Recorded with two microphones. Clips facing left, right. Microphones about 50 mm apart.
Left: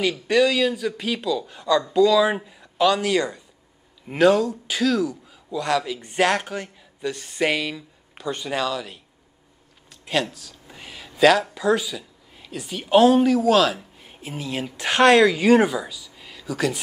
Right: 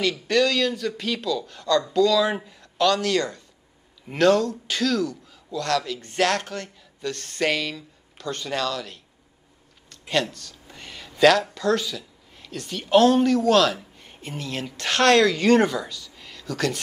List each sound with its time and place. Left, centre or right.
0.3 s a man's voice: centre